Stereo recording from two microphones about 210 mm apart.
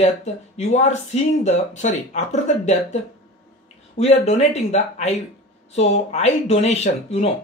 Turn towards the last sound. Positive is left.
turn(degrees=30)  # may be behind; listen again after turning